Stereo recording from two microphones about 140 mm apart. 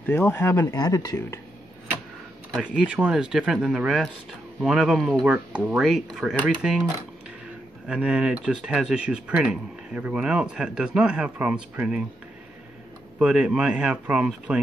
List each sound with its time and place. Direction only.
0.0 s speech: 15° left (ahead or behind)
2.5 s speech: 5° right (ahead or behind)
7.9 s speech: 5° right (ahead or behind)
13.2 s speech: 5° right (ahead or behind)